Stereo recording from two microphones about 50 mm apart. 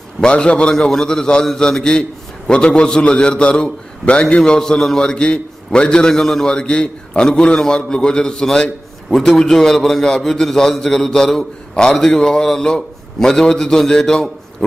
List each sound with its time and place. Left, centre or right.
0.2 s a man's voice: centre